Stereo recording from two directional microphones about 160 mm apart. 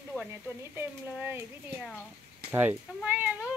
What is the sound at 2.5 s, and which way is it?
Speech, 10° right (ahead or behind).